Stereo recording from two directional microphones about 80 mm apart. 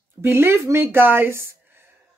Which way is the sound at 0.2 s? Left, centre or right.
Right.